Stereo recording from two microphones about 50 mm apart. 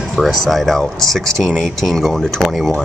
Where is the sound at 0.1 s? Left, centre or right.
Centre.